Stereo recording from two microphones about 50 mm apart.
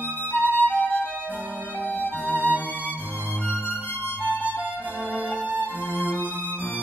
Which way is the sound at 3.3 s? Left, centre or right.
Left.